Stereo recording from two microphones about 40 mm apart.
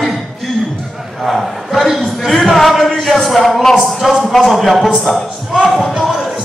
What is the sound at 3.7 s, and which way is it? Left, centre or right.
Speech, centre.